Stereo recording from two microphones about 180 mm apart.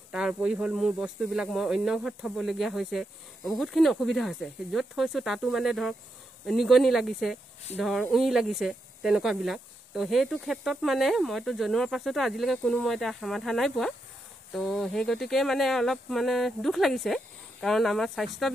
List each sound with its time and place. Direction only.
0.1 s speech: 5° right (ahead or behind)